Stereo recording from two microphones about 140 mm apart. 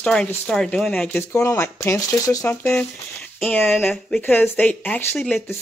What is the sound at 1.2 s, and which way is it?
Speech, 20° left (ahead or behind).